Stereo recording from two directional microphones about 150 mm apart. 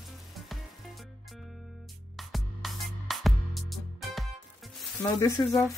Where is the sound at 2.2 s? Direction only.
Centre (ahead or behind).